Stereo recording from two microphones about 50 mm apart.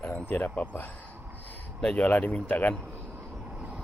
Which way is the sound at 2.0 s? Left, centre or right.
Left.